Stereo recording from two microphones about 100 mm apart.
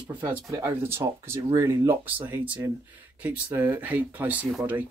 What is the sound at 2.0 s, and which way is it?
Speech, 20° right (ahead or behind).